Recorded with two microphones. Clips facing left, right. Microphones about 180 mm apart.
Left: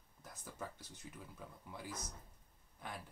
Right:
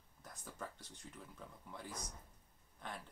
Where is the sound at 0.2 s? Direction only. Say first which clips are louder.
Left 1 dB; 5° left (ahead or behind).